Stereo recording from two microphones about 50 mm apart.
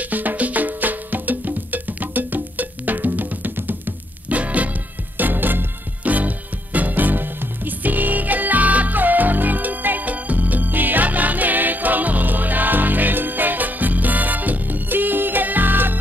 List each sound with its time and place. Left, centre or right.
0.0 s music: right
5.1 s music: right